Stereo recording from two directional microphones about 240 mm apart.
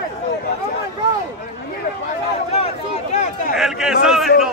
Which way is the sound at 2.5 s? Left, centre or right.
Left.